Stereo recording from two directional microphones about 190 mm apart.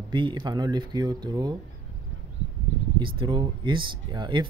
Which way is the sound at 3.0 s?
25° right (ahead or behind).